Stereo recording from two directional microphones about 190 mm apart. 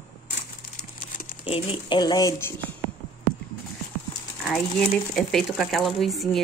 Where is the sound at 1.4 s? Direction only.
30° left (ahead or behind); by 2.6 s 10° left (ahead or behind).